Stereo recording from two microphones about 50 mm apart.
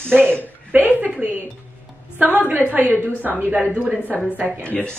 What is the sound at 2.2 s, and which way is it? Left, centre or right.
A woman's voice, right.